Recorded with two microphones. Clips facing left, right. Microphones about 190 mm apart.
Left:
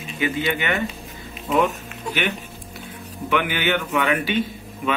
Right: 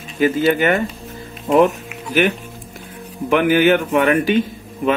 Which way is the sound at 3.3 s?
40° right (ahead or behind).